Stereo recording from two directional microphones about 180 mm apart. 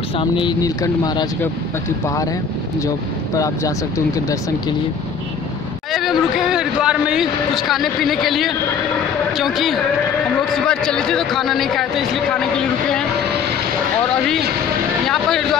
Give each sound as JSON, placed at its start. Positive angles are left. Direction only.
{"t": 0.2, "sound": "speech", "side_deg": 25}
{"t": 3.3, "sound": "speech", "side_deg": 20}
{"t": 5.9, "sound": "a man's voice", "side_deg": 0}
{"t": 15.0, "sound": "a sound", "side_deg": 0}